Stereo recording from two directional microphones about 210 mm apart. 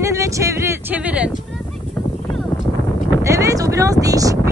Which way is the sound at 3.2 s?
15° right (ahead or behind).